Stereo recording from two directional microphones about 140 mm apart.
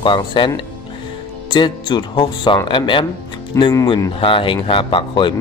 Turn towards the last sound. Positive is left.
turn(degrees=35)  # may be behind; listen again after turning